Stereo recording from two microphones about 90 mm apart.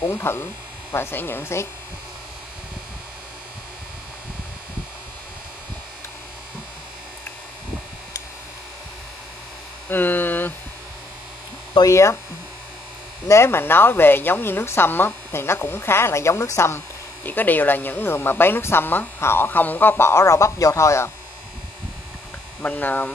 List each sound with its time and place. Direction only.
0.0 s a woman's voice: 30° left (ahead or behind)
9.8 s hum: 20° left (ahead or behind)
11.8 s electric shaver: 30° left (ahead or behind)
13.3 s a woman's voice: 25° left (ahead or behind)
22.6 s speech: 20° left (ahead or behind)